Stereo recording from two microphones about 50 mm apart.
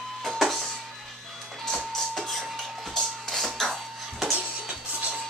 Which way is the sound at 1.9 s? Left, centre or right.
Centre.